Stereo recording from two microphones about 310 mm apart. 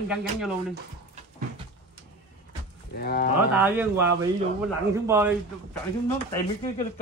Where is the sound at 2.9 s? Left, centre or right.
Left.